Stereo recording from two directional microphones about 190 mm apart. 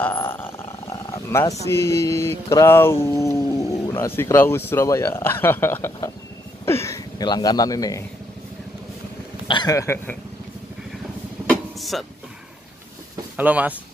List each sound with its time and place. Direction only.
0.0 s speech: 10° left (ahead or behind)
9.5 s speech: 20° left (ahead or behind)
11.4 s vehicle: centre (ahead or behind)
13.4 s speech: 10° right (ahead or behind)